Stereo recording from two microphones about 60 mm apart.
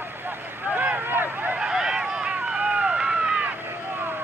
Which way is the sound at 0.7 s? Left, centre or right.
Right.